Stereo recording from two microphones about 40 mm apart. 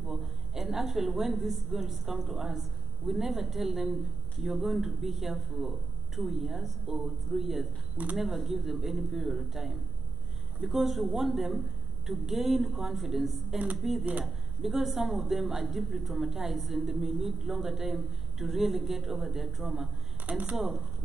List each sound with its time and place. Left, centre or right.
0.0 s a woman's voice: centre
20.2 s speech: right
20.5 s a woman's voice: centre